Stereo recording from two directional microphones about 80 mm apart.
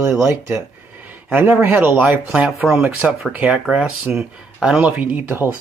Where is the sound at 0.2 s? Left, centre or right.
Right.